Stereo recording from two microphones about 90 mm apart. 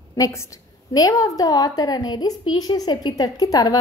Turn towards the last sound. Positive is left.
turn(degrees=45)  # may be behind; listen again after turning